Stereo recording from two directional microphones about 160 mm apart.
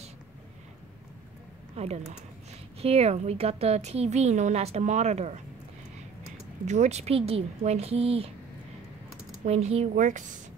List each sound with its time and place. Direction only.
1.8 s a woman's voice: 40° right (ahead or behind)
6.6 s speech: 45° right (ahead or behind)
9.4 s a woman's voice: 45° right (ahead or behind)